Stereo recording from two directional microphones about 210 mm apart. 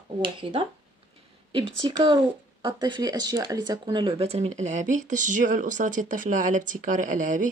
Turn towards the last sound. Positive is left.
turn(degrees=-35)  # may be behind; listen again after turning